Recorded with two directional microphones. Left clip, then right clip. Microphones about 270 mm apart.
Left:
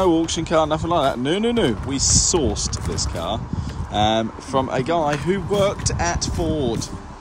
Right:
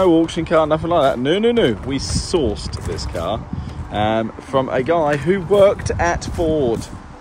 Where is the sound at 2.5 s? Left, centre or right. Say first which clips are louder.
Even; left.